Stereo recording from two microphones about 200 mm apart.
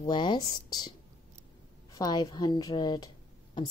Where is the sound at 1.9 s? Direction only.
20° left (ahead or behind).